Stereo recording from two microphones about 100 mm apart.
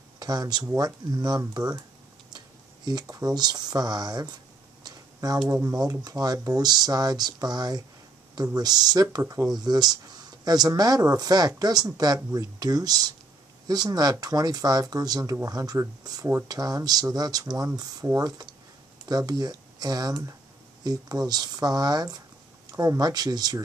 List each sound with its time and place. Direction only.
0.2 s speech: 40° right (ahead or behind)
4.8 s a sound: 40° right (ahead or behind)
5.5 s speech: 30° right (ahead or behind)
9.6 s speech: 40° right (ahead or behind)